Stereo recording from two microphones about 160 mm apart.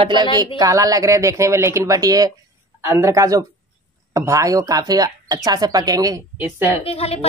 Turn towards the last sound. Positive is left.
turn(degrees=40)  # may be behind; listen again after turning